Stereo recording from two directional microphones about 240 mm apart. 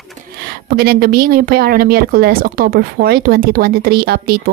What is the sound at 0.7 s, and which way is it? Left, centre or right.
Speech, right.